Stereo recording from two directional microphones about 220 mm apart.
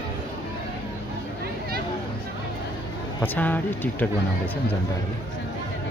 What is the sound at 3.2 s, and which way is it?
Speech, 5° left (ahead or behind).